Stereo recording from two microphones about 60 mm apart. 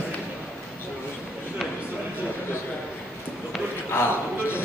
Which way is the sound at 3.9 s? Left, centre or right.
Left.